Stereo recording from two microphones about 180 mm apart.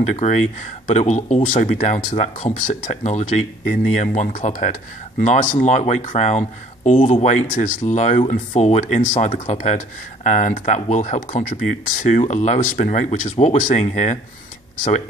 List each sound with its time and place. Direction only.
0.1 s speech: 40° left (ahead or behind)
7.5 s speech: 50° left (ahead or behind)